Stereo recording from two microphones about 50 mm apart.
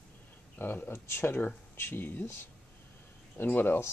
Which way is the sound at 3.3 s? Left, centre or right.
Left.